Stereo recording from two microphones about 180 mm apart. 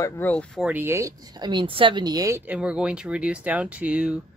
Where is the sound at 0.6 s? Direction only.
10° right (ahead or behind).